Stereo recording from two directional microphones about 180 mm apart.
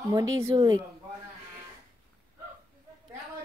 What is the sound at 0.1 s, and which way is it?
Speech, 20° right (ahead or behind).